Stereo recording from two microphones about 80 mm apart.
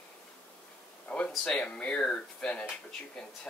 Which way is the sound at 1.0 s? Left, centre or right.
Centre.